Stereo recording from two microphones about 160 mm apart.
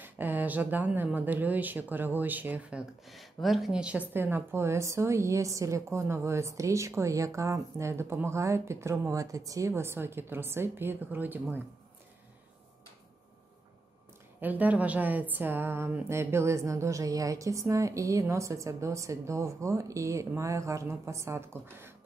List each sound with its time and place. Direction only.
0.0 s a woman's voice: 10° right (ahead or behind)
14.4 s a woman's voice: 10° right (ahead or behind)